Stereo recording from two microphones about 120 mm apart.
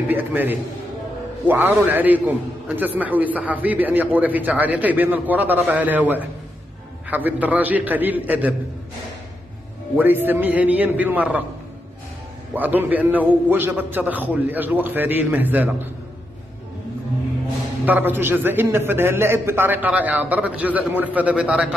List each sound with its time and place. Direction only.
0.1 s a man's voice: 15° right (ahead or behind)
9.9 s a man's voice: 15° right (ahead or behind)
12.5 s a man's voice: 15° right (ahead or behind)
17.8 s a man's voice: 15° right (ahead or behind)